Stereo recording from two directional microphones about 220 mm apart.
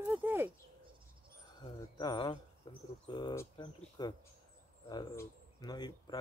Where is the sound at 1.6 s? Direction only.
20° left (ahead or behind).